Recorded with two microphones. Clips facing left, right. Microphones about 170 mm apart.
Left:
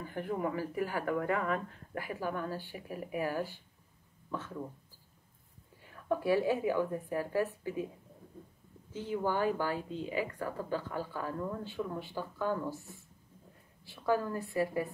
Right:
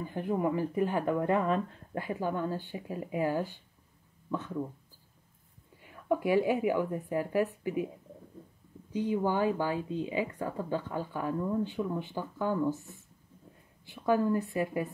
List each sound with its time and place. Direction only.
0.0 s speech: 15° right (ahead or behind)
5.9 s a woman's voice: 15° right (ahead or behind)
8.9 s speech: 15° right (ahead or behind)
13.8 s speech: 20° right (ahead or behind)